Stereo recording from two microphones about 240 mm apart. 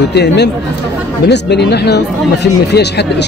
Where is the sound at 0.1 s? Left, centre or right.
Left.